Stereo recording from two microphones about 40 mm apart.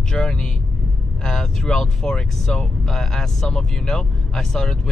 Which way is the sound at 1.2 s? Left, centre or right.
Centre.